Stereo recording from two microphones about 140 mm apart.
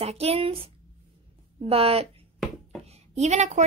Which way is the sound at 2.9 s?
50° right (ahead or behind).